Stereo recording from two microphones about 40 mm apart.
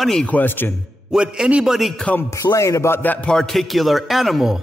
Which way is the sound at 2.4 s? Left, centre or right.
Left.